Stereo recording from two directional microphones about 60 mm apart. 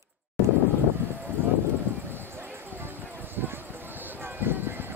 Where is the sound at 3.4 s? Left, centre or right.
Right.